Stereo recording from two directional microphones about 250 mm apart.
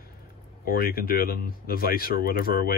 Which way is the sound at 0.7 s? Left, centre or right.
Left.